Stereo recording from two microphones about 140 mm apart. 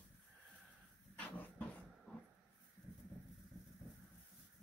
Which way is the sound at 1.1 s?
10° left (ahead or behind).